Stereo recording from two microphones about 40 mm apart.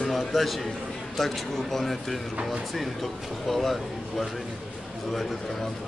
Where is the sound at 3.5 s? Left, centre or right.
Centre.